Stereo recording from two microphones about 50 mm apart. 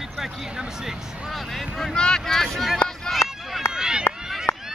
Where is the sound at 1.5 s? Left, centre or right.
Centre.